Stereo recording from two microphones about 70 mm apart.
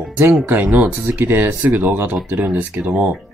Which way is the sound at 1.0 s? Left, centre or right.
Right.